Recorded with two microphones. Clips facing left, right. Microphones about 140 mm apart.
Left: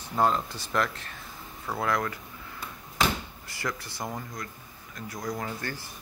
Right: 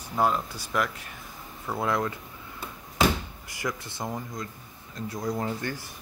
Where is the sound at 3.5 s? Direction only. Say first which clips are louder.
Right 2 dB; 20° right (ahead or behind).